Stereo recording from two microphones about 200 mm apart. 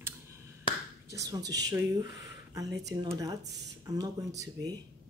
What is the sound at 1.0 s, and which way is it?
Speech, 15° right (ahead or behind).